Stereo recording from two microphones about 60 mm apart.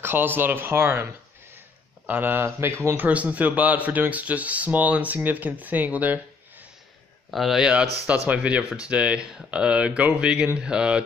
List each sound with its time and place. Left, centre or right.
0.0 s speech: right
2.0 s speech: right
2.6 s speech: right
3.0 s speech: right
7.3 s speech: centre
8.1 s speech: right